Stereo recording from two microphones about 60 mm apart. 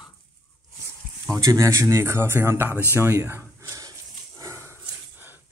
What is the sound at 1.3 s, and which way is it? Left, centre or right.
Speech, right.